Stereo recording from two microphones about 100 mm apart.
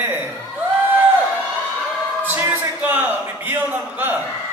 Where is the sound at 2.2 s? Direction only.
20° right (ahead or behind).